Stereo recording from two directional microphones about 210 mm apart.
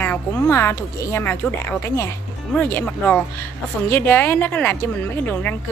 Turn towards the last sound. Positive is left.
turn(degrees=10)  # may be behind; listen again after turning